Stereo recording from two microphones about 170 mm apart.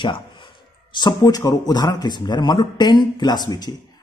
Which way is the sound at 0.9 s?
25° left (ahead or behind).